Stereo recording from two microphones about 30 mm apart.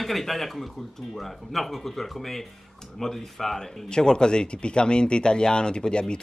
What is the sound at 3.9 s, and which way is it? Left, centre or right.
Speech, left.